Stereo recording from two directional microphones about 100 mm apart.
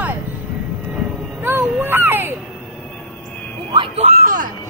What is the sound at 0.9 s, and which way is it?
Vehicle, 5° right (ahead or behind).